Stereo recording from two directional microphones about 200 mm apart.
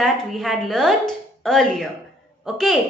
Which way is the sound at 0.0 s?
Centre (ahead or behind).